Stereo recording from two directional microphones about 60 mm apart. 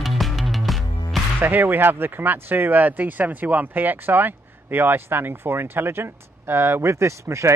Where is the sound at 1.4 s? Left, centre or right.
Right.